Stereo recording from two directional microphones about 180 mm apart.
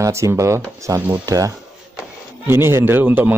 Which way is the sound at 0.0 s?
15° right (ahead or behind).